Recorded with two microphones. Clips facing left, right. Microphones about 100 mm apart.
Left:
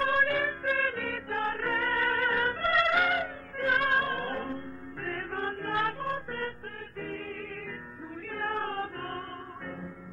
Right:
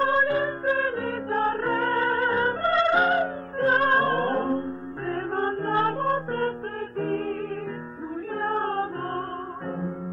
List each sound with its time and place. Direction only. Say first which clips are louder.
0.0 s music: right 5 dB; 25° right (ahead or behind)
8.4 s music: right 6 dB; 30° right (ahead or behind)